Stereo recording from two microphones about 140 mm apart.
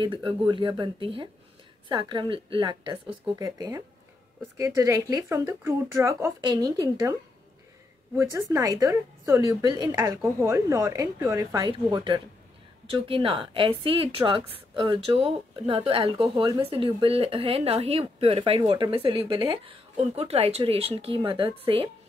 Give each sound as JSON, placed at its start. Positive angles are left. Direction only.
{"t": 0.0, "sound": "a woman's voice", "side_deg": -40}
{"t": 8.2, "sound": "speech", "side_deg": -20}
{"t": 11.6, "sound": "a woman's voice", "side_deg": -35}